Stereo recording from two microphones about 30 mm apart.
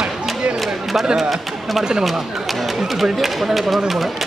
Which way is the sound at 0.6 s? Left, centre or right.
Centre.